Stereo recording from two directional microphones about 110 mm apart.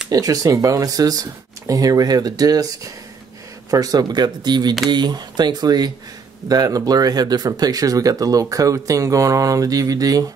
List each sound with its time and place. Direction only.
0.1 s speech: 35° right (ahead or behind)